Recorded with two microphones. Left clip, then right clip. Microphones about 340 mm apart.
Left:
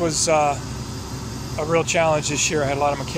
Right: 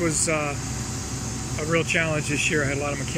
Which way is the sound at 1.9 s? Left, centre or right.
Centre.